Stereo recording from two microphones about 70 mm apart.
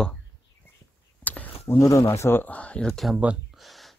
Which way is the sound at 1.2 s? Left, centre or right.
Left.